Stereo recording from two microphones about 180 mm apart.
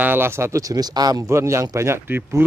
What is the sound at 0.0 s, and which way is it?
Speech, 10° right (ahead or behind).